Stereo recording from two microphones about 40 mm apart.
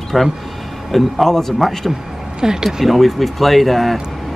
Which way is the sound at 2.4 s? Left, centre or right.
Centre.